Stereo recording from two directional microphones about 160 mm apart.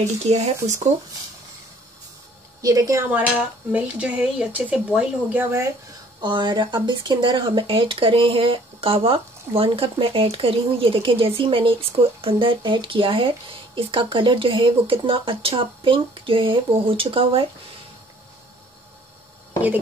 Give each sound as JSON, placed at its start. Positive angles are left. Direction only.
{"t": 0.0, "sound": "speech", "side_deg": -45}
{"t": 2.6, "sound": "a woman's voice", "side_deg": -20}
{"t": 3.1, "sound": "speech", "side_deg": -10}
{"t": 6.2, "sound": "speech", "side_deg": -30}